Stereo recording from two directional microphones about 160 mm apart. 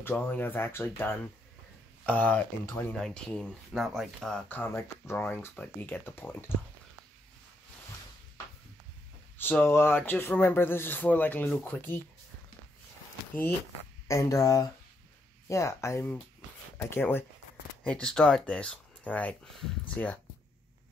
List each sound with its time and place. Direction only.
0.0 s speech: 10° left (ahead or behind)
9.4 s speech: 15° left (ahead or behind)
14.0 s speech: 20° left (ahead or behind)